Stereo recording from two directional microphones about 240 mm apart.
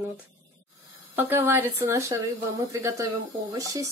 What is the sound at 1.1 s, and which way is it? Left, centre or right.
Speech, centre.